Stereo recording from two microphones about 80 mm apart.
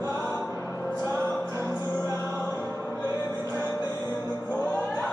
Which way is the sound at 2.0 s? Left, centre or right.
Left.